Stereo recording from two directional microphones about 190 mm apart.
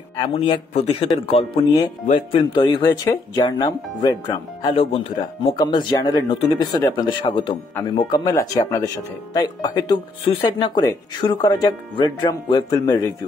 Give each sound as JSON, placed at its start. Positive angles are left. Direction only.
{"t": 0.2, "sound": "speech", "side_deg": 25}